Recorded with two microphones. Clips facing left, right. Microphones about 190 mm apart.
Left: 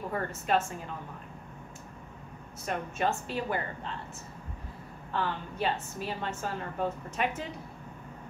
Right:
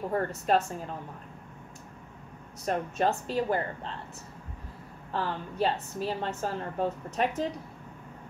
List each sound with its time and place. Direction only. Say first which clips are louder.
0.3 s a woman's voice: right 2 dB; 40° right (ahead or behind)
2.6 s a woman's voice: right 3 dB; 35° right (ahead or behind)
5.1 s a woman's voice: right 1 dB; 35° right (ahead or behind)